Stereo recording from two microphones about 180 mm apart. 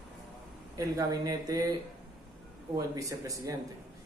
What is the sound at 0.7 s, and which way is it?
Speech, 20° right (ahead or behind).